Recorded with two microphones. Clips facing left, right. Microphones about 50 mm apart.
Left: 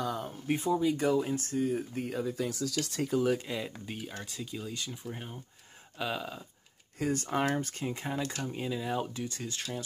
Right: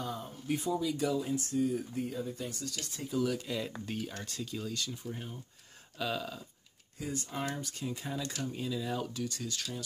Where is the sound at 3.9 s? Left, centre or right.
Centre.